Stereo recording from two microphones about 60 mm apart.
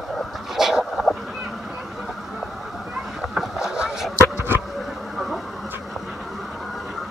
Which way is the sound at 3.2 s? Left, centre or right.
Centre.